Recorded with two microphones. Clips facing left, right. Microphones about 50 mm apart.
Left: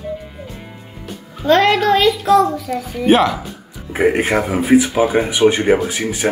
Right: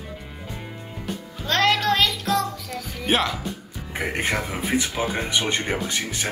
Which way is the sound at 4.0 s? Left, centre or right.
Centre.